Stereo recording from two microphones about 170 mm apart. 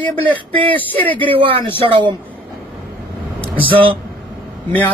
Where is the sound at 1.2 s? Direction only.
30° right (ahead or behind).